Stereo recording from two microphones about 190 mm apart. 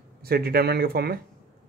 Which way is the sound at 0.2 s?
55° right (ahead or behind).